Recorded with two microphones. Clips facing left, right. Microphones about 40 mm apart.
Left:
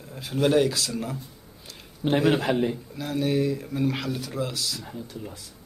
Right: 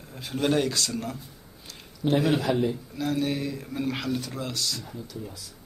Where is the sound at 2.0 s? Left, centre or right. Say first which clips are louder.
Left 1 dB; left.